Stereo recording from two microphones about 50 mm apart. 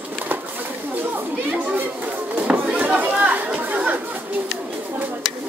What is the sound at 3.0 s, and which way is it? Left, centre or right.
Chatter, right.